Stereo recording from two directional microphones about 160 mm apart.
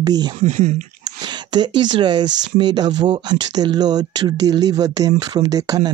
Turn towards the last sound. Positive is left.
turn(degrees=-25)  # may be behind; listen again after turning